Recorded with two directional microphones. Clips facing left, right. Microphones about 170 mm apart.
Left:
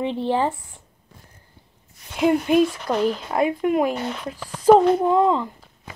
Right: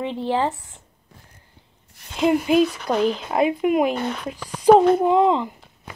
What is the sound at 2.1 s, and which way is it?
Speech, centre (ahead or behind).